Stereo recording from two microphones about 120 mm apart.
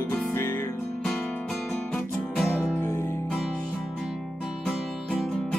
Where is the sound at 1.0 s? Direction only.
5° left (ahead or behind).